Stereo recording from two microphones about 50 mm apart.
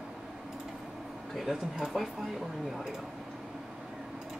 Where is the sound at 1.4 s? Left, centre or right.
Centre.